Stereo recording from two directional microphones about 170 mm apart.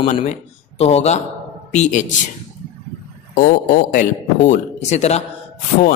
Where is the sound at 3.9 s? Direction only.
45° left (ahead or behind).